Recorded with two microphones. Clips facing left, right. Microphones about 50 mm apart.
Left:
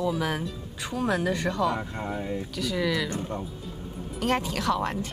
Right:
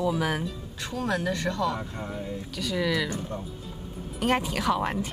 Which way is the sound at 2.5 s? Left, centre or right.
Centre.